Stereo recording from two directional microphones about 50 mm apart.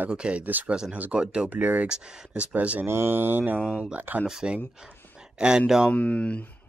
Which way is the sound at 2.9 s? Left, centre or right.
Right.